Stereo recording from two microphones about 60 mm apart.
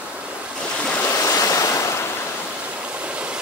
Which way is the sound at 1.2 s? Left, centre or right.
Left.